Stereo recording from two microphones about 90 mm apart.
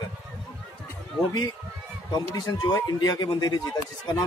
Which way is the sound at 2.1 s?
50° left (ahead or behind).